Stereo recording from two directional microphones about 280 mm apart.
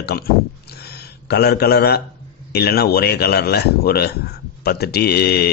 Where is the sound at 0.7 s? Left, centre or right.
Left.